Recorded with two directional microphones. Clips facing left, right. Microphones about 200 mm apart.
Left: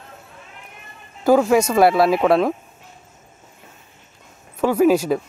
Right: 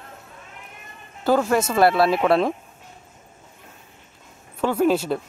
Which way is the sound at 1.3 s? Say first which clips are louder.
Left 4 dB; centre (ahead or behind).